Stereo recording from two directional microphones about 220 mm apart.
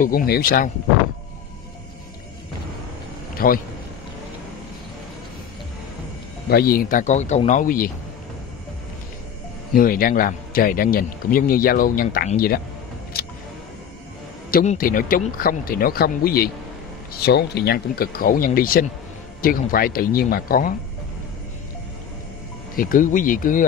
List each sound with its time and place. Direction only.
0.0 s a man's voice: 40° left (ahead or behind)
3.3 s a man's voice: 40° left (ahead or behind)
6.5 s a man's voice: 45° left (ahead or behind)
9.8 s a man's voice: 40° left (ahead or behind)
13.1 s vehicle: 45° left (ahead or behind)
14.5 s a man's voice: 40° left (ahead or behind)
22.8 s a man's voice: 40° left (ahead or behind)